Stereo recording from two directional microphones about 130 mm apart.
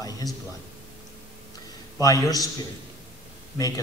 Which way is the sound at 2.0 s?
25° left (ahead or behind).